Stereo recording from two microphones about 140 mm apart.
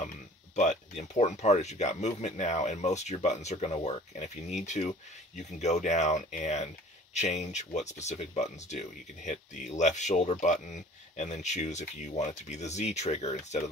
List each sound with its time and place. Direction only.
0.6 s speech: 55° left (ahead or behind)